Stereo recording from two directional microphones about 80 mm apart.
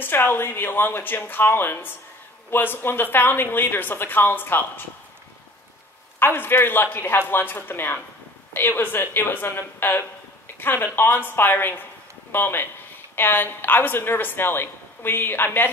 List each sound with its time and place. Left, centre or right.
0.0 s a woman's voice: left
6.1 s a woman's voice: left